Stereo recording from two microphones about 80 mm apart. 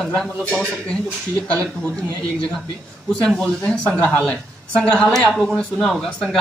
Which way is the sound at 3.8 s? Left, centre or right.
Centre.